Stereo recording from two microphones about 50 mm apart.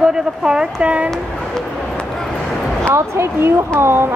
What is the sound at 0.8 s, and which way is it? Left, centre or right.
Speech, right.